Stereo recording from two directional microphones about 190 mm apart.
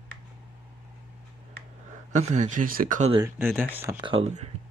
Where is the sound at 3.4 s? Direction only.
10° right (ahead or behind).